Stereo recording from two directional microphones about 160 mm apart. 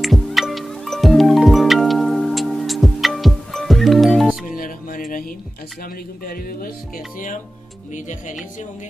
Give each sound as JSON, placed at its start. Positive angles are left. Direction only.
{"t": 0.0, "sound": "music", "side_deg": 0}
{"t": 4.6, "sound": "music", "side_deg": 60}
{"t": 6.2, "sound": "music", "side_deg": 65}
{"t": 7.9, "sound": "speech", "side_deg": 50}